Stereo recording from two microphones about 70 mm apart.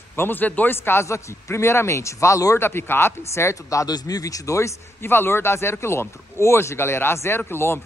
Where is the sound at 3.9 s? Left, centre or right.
Left.